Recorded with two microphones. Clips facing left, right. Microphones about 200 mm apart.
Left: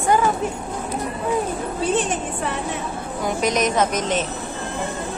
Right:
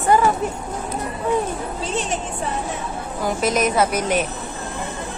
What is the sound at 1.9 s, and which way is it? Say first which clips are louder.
Speech: left 2 dB; 55° left (ahead or behind).